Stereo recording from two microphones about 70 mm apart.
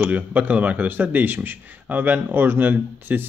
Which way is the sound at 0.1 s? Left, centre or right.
Right.